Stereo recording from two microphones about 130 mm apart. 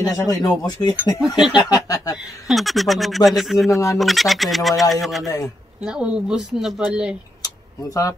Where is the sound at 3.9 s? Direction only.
Centre (ahead or behind).